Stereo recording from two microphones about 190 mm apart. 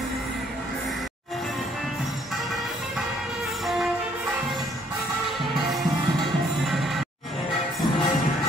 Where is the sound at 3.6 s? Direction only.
Centre (ahead or behind).